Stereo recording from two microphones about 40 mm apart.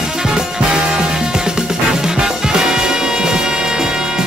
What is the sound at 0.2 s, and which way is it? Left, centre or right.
Music, centre.